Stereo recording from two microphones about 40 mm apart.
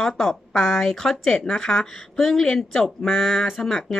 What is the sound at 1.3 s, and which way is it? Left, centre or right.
A woman's voice, centre.